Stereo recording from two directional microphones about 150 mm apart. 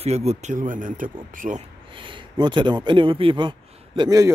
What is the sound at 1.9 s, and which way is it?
Speech, 35° right (ahead or behind).